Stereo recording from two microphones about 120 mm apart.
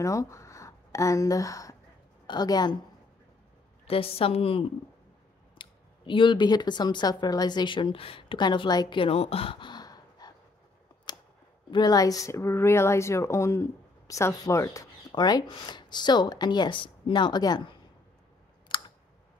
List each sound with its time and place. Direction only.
0.0 s speech: 25° left (ahead or behind)
3.8 s a woman's voice: 55° left (ahead or behind)
9.0 s gasp: 55° left (ahead or behind); by 10.3 s 35° left (ahead or behind)
11.1 s a sound: 35° left (ahead or behind)
11.7 s speech: 35° left (ahead or behind)
18.7 s clicking: 40° left (ahead or behind)